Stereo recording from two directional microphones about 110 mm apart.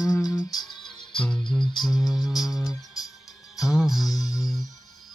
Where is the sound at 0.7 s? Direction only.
45° left (ahead or behind).